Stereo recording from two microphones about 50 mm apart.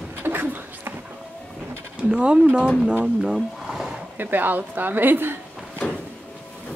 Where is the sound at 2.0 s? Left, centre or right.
Centre.